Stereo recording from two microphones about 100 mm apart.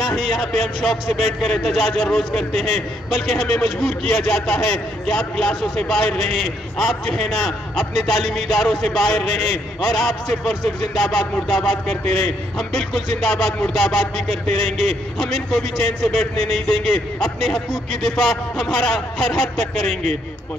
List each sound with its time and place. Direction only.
0.0 s a man's voice: centre (ahead or behind)